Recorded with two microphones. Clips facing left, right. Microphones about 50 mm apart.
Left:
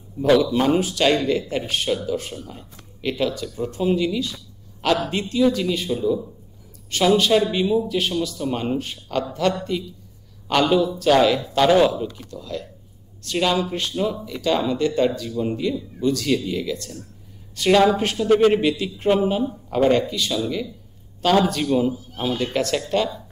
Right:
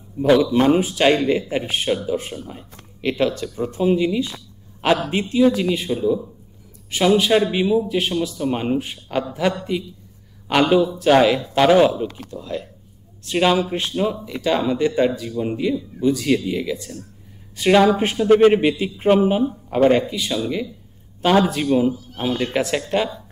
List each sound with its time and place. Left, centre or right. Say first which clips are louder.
0.2 s speech: right 2 dB; centre